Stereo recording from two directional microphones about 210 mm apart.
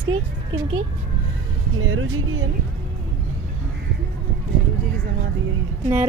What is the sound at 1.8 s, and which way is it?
Speech, 75° right (ahead or behind).